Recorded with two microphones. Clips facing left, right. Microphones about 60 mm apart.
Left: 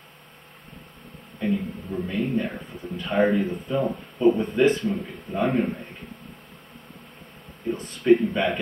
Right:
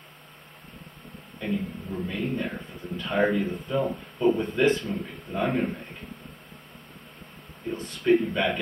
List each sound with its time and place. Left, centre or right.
1.4 s a man's voice: centre
7.7 s speech: left
8.0 s speech: centre